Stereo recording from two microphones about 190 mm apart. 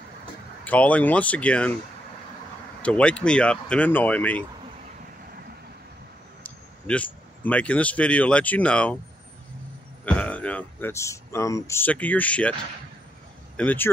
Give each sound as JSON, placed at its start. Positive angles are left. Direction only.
{"t": 0.7, "sound": "speech", "side_deg": 5}
{"t": 2.8, "sound": "speech", "side_deg": 5}
{"t": 6.4, "sound": "a sound", "side_deg": 5}
{"t": 7.4, "sound": "speech", "side_deg": 5}
{"t": 10.0, "sound": "speech", "side_deg": 5}
{"t": 13.6, "sound": "speech", "side_deg": 10}